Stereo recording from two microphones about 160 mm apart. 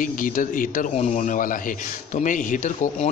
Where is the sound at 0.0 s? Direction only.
60° left (ahead or behind).